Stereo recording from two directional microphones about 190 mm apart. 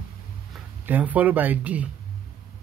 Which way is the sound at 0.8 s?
10° right (ahead or behind).